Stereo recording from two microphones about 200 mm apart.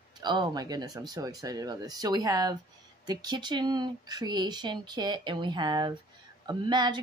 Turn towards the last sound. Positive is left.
turn(degrees=-20)  # may be behind; listen again after turning